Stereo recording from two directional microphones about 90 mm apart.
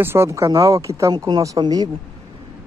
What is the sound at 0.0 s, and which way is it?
Speech, 30° right (ahead or behind).